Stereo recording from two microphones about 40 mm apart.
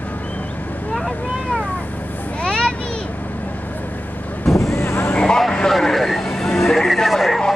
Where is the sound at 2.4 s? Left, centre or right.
Left.